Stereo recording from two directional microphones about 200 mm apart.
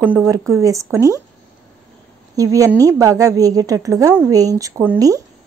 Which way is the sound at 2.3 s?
15° right (ahead or behind).